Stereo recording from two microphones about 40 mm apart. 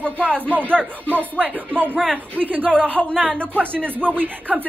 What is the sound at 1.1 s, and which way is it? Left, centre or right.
Speech, right.